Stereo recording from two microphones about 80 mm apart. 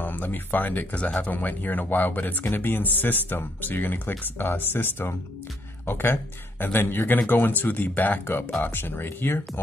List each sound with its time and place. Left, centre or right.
0.0 s speech: left